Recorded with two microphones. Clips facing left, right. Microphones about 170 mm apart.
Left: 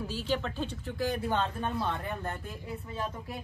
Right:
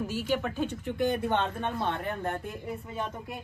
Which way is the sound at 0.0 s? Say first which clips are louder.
Right 3 dB; 10° right (ahead or behind).